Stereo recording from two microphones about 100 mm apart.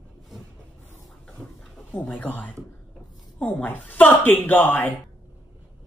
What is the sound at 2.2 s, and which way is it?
A woman's voice, 15° left (ahead or behind).